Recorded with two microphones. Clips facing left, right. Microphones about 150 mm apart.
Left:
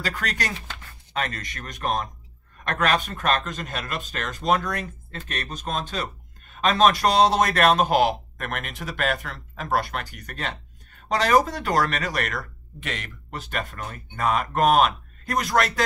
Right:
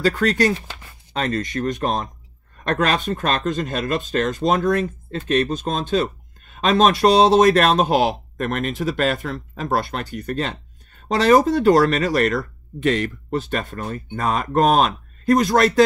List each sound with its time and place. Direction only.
0.0 s speech: 30° right (ahead or behind)